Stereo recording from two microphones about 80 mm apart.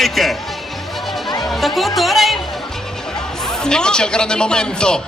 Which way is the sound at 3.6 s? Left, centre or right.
Centre.